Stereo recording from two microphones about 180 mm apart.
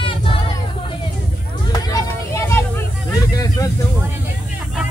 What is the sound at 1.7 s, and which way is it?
Vehicle, 15° left (ahead or behind).